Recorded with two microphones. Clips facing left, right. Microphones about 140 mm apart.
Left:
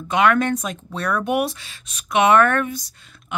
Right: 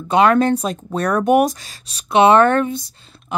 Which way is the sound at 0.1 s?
35° right (ahead or behind).